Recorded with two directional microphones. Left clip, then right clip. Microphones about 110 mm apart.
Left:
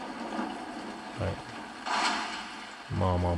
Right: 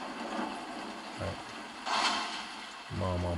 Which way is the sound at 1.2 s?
30° left (ahead or behind).